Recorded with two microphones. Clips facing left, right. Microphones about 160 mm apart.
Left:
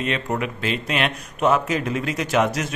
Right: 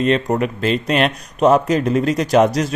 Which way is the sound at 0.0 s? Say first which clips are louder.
Right 8 dB; 35° right (ahead or behind).